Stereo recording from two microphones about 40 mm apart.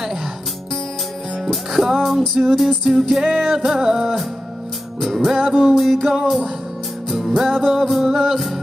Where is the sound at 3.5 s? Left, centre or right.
Centre.